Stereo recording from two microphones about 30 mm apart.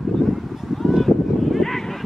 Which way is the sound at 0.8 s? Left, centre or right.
Centre.